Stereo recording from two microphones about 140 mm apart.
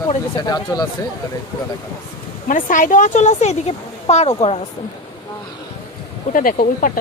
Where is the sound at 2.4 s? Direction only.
70° left (ahead or behind); by 4.6 s 50° left (ahead or behind).